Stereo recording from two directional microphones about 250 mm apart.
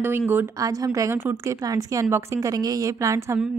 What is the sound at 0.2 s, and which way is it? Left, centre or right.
Speech, centre.